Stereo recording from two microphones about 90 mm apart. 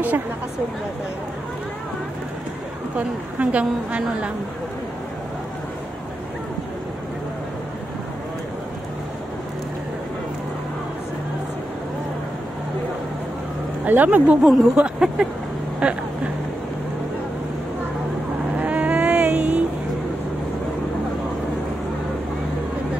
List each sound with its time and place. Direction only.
3.0 s a woman's voice: 15° right (ahead or behind)
13.8 s a woman's voice: 20° right (ahead or behind)
14.4 s a woman's voice: 5° right (ahead or behind)
18.6 s vehicle: 15° right (ahead or behind)